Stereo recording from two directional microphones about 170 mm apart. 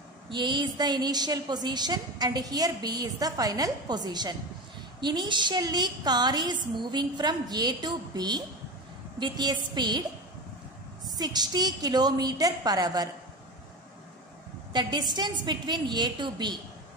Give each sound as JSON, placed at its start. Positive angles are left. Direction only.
{"t": 0.3, "sound": "a woman's voice", "side_deg": -25}
{"t": 11.1, "sound": "a woman's voice", "side_deg": -25}
{"t": 14.7, "sound": "a woman's voice", "side_deg": -25}